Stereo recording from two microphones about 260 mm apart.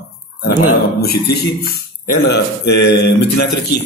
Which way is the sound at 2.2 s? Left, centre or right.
Left.